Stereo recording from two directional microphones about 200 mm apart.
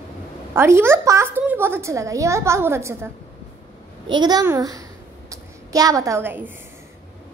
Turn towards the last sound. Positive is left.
turn(degrees=-10)  # may be behind; listen again after turning